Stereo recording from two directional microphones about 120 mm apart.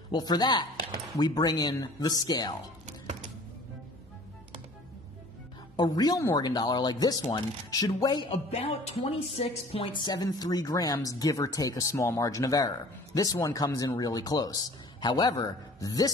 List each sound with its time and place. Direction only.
0.1 s speech: 35° left (ahead or behind)
5.8 s speech: 35° left (ahead or behind)
8.3 s speech: 55° left (ahead or behind); by 16.1 s 30° left (ahead or behind)